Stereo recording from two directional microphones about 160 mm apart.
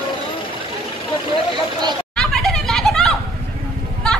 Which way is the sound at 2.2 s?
Centre (ahead or behind).